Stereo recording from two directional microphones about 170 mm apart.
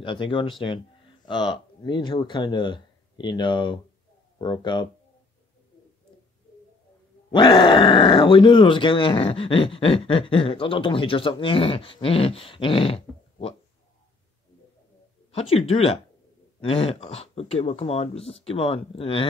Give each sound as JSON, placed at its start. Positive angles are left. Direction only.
{"t": 0.0, "sound": "speech", "side_deg": 30}
{"t": 7.2, "sound": "speech", "side_deg": 25}
{"t": 15.3, "sound": "speech", "side_deg": 35}